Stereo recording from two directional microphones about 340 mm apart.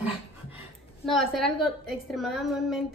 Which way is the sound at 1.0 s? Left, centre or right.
Centre.